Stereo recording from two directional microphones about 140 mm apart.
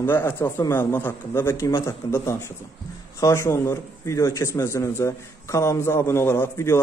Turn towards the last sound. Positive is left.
turn(degrees=20)  # may be behind; listen again after turning